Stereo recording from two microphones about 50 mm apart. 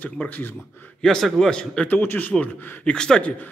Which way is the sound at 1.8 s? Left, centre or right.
Left.